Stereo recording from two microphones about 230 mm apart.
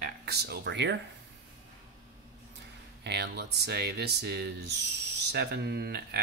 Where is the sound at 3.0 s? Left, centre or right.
Right.